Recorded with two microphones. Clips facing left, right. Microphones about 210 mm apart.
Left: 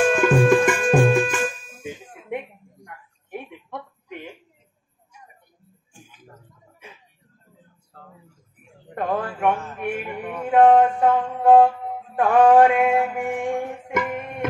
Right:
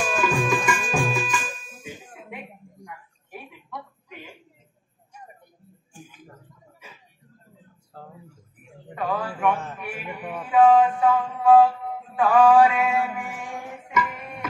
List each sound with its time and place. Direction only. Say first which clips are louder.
0.1 s music: left 7 dB; 55° left (ahead or behind)
8.9 s a sound: left 3 dB; 50° left (ahead or behind)
10.4 s music: left 2 dB; 50° left (ahead or behind)